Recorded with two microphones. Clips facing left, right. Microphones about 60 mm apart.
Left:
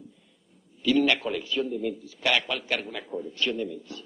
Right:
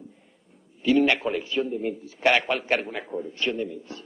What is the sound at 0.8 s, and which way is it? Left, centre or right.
A man's voice, right.